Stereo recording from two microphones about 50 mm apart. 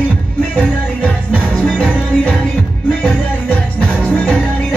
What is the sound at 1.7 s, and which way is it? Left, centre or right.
Music, left.